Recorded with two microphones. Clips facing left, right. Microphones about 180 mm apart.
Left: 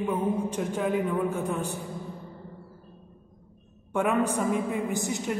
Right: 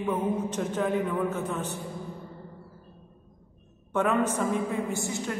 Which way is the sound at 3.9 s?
10° left (ahead or behind).